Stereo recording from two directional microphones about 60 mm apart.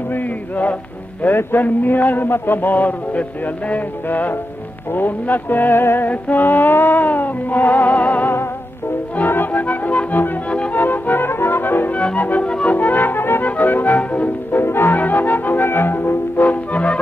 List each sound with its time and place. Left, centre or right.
0.1 s music: left
10.8 s music: left
12.4 s music: centre
12.7 s music: left
14.6 s music: left